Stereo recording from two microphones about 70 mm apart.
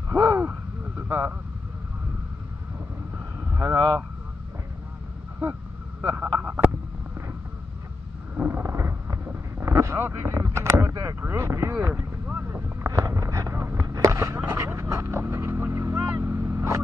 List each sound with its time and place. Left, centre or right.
0.1 s owl: right
0.5 s a sound: right
3.7 s speech: right
5.9 s speech: right
8.4 s boat: right
10.0 s speech: right
12.3 s vehicle: right
12.5 s a sound: right
16.2 s vehicle: right